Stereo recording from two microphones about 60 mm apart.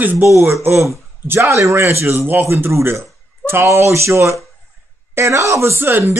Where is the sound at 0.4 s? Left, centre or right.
Right.